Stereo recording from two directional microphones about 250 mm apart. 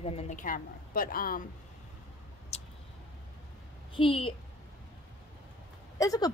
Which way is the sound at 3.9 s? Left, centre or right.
Left.